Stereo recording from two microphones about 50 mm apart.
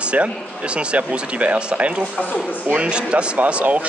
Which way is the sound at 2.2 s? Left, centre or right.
Left.